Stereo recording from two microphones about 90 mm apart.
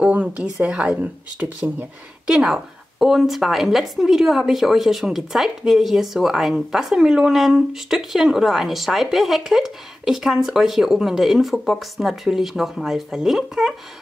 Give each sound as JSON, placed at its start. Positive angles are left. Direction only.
{"t": 0.0, "sound": "a woman's voice", "side_deg": -15}
{"t": 2.3, "sound": "a woman's voice", "side_deg": -5}